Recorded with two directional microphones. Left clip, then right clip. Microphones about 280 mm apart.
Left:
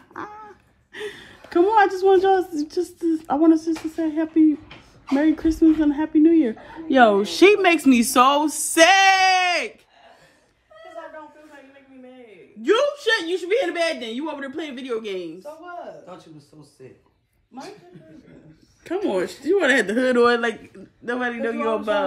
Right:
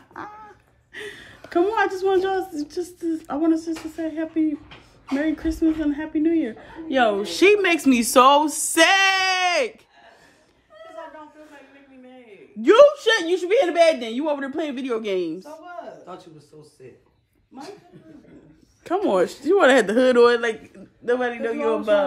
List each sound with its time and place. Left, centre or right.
0.1 s dog: centre
0.9 s a woman's voice: centre
12.6 s a woman's voice: right
19.1 s a woman's voice: centre